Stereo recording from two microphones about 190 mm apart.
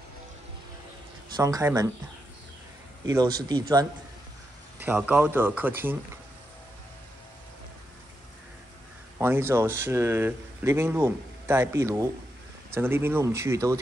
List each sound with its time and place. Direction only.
1.3 s speech: 20° right (ahead or behind)
3.1 s speech: 20° right (ahead or behind)
4.8 s speech: 10° right (ahead or behind)
9.2 s speech: 10° right (ahead or behind)